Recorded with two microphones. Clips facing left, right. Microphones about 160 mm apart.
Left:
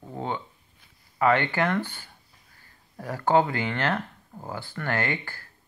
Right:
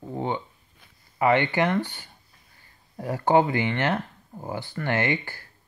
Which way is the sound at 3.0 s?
20° right (ahead or behind).